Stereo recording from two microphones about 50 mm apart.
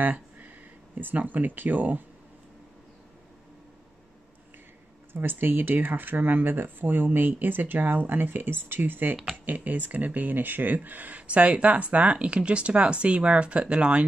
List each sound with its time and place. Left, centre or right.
0.0 s a sound: right
0.9 s speech: right
5.1 s speech: right